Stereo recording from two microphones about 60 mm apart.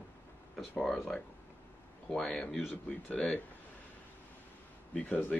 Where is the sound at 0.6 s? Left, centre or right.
Centre.